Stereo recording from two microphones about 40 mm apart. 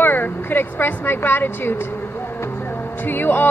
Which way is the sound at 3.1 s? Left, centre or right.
Left.